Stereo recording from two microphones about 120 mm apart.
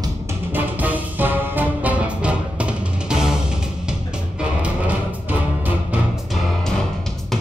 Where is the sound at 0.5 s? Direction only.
15° right (ahead or behind).